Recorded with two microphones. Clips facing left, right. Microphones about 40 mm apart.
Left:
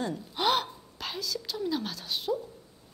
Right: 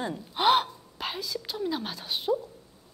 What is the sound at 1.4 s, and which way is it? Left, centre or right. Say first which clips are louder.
Speech: even; centre.